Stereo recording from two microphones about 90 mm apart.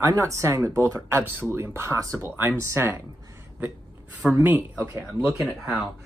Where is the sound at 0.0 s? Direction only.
35° right (ahead or behind).